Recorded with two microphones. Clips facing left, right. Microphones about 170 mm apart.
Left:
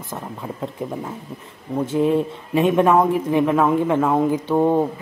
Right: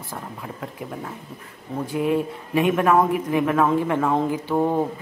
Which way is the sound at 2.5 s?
25° left (ahead or behind).